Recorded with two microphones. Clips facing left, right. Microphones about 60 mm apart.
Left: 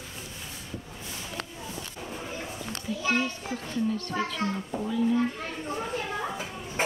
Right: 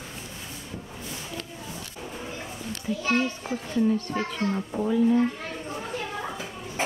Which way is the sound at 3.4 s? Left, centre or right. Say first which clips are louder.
Right 5 dB; centre.